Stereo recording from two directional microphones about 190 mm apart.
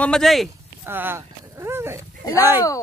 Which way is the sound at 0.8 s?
10° right (ahead or behind).